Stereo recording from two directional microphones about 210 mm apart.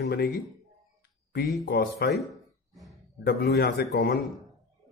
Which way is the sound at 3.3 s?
50° left (ahead or behind).